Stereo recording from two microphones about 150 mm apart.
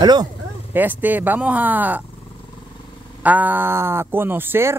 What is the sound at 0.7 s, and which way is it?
Speech, 10° right (ahead or behind).